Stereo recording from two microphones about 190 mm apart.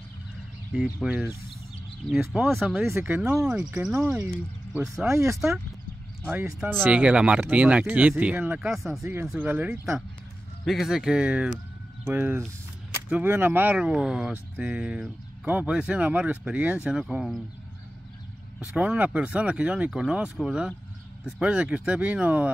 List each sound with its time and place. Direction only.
1.0 s speech: 10° right (ahead or behind)
5.1 s speech: 15° right (ahead or behind); by 17.4 s centre (ahead or behind)
18.6 s speech: 5° right (ahead or behind)